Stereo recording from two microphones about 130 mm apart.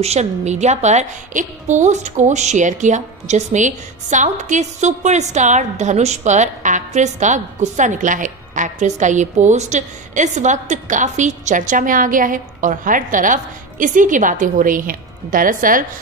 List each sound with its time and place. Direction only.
0.0 s a woman's voice: 55° right (ahead or behind); by 15.8 s 90° right